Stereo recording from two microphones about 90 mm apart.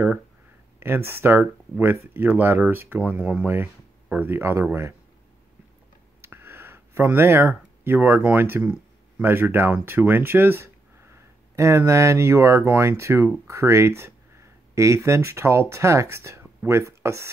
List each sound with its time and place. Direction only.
0.7 s speech: 25° right (ahead or behind)
6.2 s a sound: 25° right (ahead or behind)
9.2 s speech: 25° right (ahead or behind)